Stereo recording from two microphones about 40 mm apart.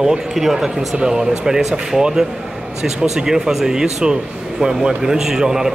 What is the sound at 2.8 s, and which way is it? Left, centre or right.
Speech, centre.